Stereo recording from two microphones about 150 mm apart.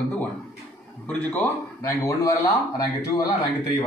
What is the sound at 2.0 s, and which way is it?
Speech, 20° left (ahead or behind).